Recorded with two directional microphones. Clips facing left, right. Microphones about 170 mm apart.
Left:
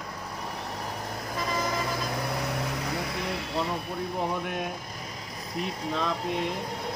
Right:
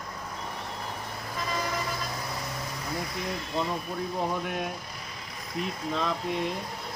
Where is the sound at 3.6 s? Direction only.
Centre (ahead or behind).